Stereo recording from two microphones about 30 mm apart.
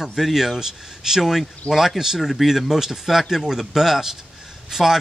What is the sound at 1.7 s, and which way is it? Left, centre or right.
Speech, left.